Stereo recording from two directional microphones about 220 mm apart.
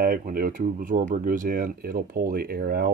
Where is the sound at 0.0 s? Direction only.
40° right (ahead or behind).